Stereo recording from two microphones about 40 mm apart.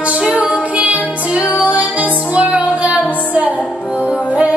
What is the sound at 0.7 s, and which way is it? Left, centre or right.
Music, right.